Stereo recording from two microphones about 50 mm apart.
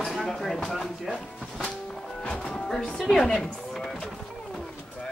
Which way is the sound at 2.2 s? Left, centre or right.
Left.